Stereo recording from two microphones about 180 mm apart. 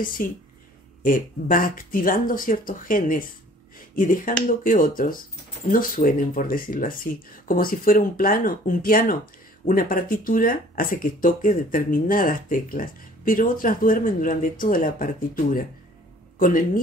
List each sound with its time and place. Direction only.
0.2 s speech: 50° left (ahead or behind)
16.3 s speech: 50° left (ahead or behind)